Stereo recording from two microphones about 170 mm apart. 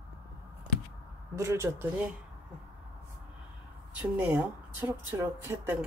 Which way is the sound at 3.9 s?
10° right (ahead or behind).